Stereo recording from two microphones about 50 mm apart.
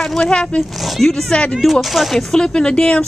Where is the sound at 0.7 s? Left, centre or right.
Centre.